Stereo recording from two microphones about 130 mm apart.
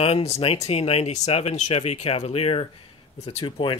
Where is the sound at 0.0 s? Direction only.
50° left (ahead or behind).